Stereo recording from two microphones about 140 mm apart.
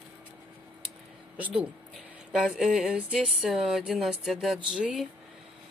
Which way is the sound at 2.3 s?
5° right (ahead or behind).